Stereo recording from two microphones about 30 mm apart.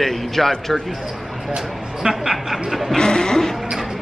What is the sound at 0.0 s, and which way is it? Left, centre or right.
Speech, centre.